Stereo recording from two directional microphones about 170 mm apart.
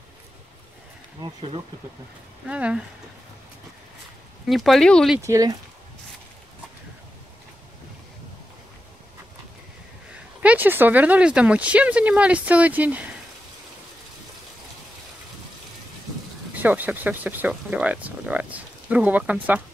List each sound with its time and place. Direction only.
1.2 s speech: 35° right (ahead or behind)
2.4 s speech: 5° right (ahead or behind)
4.5 s speech: centre (ahead or behind)
5.2 s speech: 20° right (ahead or behind)
10.4 s speech: 10° right (ahead or behind)
16.5 s speech: 10° right (ahead or behind)